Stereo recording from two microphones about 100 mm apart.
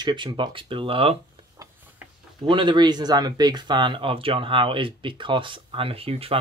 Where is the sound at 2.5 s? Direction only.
50° right (ahead or behind).